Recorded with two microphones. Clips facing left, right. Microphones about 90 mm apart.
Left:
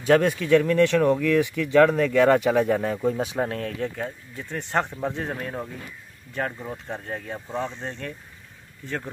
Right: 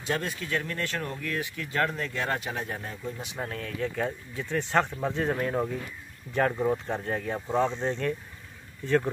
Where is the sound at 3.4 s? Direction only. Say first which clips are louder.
Left 6 dB; 45° left (ahead or behind).